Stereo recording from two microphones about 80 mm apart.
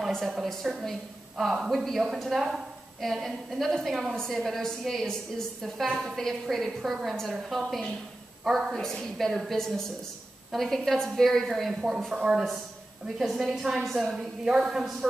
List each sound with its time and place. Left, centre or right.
0.1 s a woman's voice: centre